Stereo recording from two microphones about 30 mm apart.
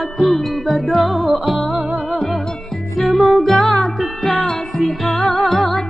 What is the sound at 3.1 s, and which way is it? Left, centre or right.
Music, centre.